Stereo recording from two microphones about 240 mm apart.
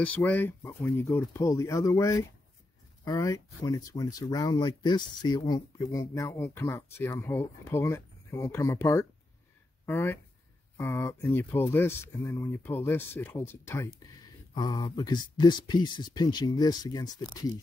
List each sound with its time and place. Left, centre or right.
0.0 s speech: centre